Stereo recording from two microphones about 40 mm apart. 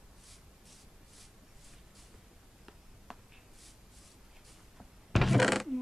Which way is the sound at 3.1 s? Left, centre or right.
Centre.